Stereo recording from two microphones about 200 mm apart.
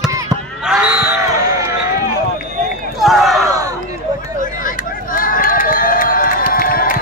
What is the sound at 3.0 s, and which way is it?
Crowd, centre (ahead or behind).